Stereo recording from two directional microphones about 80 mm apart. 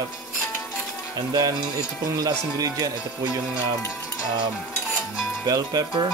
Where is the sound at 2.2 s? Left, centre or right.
Right.